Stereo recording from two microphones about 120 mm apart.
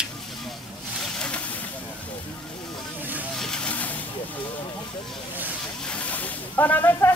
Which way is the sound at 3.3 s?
5° left (ahead or behind).